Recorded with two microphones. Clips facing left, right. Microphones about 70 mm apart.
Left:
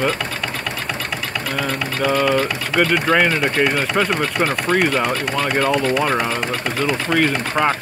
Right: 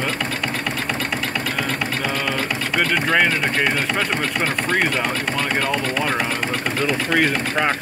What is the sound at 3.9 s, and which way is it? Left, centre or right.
Speech, centre.